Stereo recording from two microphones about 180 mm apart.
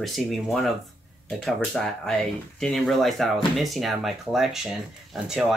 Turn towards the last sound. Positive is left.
turn(degrees=0)  # may be behind; listen again after turning